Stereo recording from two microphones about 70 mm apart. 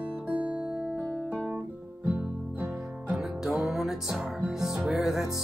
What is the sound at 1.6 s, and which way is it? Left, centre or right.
Guitar, centre.